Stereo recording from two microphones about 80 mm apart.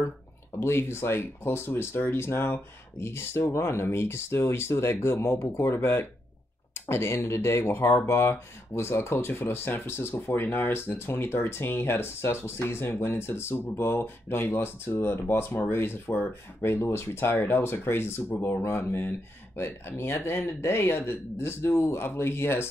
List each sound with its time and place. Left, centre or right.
0.6 s speech: left